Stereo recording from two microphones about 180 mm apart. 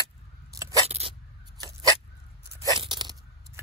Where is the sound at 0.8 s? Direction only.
35° right (ahead or behind).